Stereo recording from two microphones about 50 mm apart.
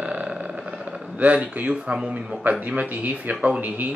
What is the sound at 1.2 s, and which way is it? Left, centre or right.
Speech, right.